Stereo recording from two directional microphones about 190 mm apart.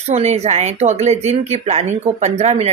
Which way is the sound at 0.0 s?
35° right (ahead or behind).